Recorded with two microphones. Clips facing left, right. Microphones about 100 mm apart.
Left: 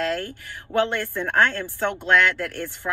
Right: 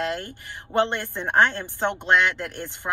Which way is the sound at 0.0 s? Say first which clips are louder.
Left 2 dB; 20° right (ahead or behind).